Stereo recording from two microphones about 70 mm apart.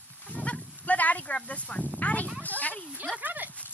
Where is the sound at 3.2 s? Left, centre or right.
Right.